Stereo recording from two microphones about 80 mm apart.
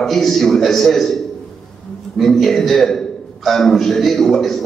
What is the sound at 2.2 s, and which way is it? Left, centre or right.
A man's voice, centre.